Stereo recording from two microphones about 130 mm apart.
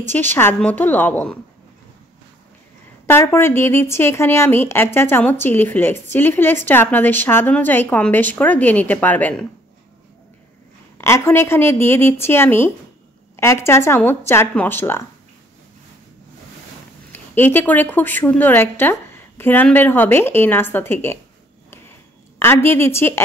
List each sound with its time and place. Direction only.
0.1 s a woman's voice: 15° left (ahead or behind)
3.1 s a woman's voice: 20° left (ahead or behind)
11.0 s a woman's voice: 20° left (ahead or behind)
17.1 s a woman's voice: 15° left (ahead or behind)
22.4 s speech: 20° left (ahead or behind)